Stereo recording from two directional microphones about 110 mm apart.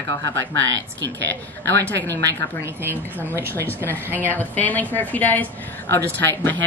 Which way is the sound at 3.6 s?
15° left (ahead or behind).